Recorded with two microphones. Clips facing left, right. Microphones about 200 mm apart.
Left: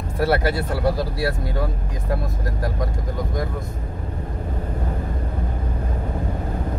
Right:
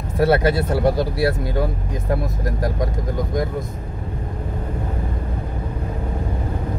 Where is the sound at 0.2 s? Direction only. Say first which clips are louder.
Right 4 dB; 20° right (ahead or behind).